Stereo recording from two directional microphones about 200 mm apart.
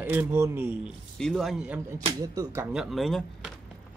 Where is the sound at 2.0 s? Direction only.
15° right (ahead or behind).